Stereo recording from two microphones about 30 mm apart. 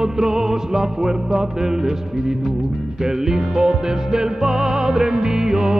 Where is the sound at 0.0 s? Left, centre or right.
Centre.